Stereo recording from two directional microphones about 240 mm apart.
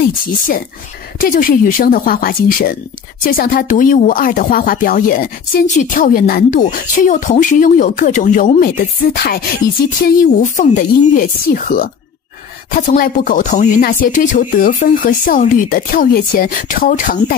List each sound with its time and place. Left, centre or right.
1.2 s speech: left